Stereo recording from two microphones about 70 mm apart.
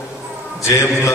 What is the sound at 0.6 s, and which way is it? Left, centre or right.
Speech, left.